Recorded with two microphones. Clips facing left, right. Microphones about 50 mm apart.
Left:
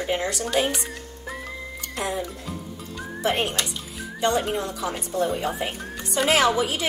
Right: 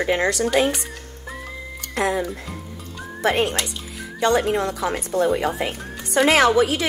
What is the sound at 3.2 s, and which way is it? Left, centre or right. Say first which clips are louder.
A woman's voice: right 4 dB; right.